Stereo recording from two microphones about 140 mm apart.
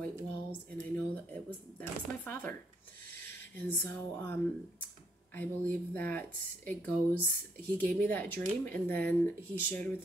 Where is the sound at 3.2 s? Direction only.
15° left (ahead or behind).